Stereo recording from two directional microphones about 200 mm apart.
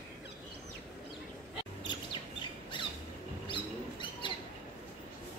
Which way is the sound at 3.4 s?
25° left (ahead or behind).